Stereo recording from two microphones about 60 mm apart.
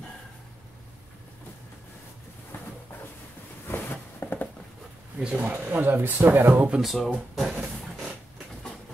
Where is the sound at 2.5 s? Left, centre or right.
Left.